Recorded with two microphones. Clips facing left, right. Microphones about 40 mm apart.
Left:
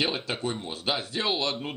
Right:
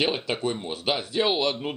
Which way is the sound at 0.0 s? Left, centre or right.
Right.